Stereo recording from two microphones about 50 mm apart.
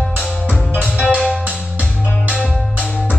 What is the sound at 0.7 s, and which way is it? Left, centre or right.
Music, left.